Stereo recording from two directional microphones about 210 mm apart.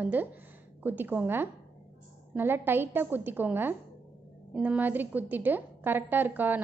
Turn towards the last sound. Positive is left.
turn(degrees=-10)  # may be behind; listen again after turning